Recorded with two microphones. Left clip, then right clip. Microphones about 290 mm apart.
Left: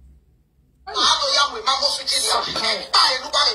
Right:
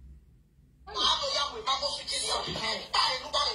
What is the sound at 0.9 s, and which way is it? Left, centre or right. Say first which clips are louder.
Music: left 10 dB; left.